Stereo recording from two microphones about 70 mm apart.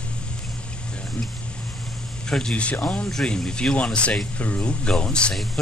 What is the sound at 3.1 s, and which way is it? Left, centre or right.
Speech, centre.